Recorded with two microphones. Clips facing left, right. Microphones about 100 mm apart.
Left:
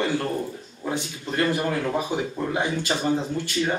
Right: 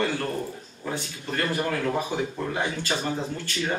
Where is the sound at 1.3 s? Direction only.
15° left (ahead or behind).